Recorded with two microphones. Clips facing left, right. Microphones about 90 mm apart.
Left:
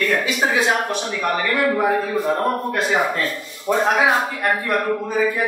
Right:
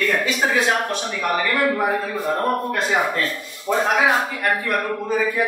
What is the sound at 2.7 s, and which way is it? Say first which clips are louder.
Speech: left 1 dB; 5° left (ahead or behind).